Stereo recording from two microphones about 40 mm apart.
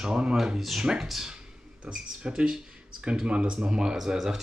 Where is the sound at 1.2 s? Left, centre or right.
Centre.